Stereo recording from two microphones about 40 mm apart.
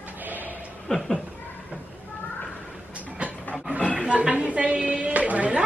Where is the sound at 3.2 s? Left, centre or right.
Right.